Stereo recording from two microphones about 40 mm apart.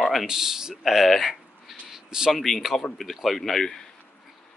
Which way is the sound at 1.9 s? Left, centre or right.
Centre.